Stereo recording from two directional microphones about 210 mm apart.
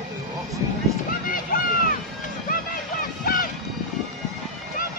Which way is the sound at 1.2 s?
40° left (ahead or behind).